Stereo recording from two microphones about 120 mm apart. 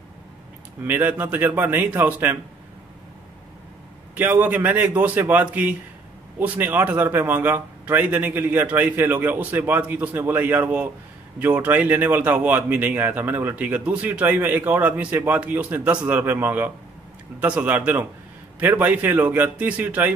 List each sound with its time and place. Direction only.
0.8 s speech: 15° right (ahead or behind)
4.1 s speech: 15° right (ahead or behind)